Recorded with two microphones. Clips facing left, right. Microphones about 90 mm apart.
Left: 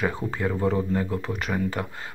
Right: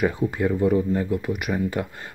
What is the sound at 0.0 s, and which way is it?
Speech, 30° left (ahead or behind).